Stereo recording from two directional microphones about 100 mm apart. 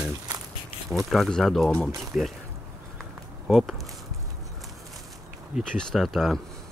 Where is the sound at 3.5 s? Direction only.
Centre (ahead or behind).